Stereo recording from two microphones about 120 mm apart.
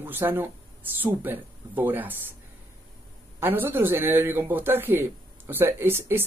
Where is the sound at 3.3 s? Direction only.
15° right (ahead or behind).